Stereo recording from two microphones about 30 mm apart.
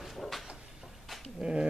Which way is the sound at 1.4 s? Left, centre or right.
Right.